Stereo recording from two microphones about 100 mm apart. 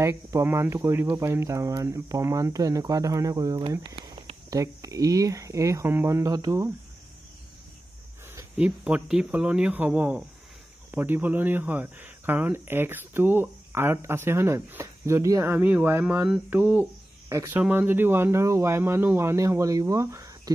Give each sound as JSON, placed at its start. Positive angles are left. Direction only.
{"t": 0.0, "sound": "speech", "side_deg": -25}
{"t": 8.5, "sound": "speech", "side_deg": -15}
{"t": 17.3, "sound": "speech", "side_deg": -30}
{"t": 17.6, "sound": "speech", "side_deg": -20}